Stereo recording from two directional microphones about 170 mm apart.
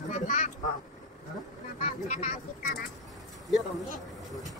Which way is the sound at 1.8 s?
45° left (ahead or behind).